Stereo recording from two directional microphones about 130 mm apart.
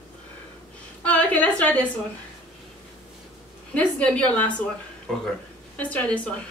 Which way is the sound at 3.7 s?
10° left (ahead or behind).